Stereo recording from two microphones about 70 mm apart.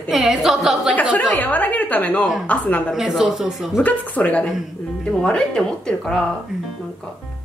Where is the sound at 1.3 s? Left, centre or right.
Left.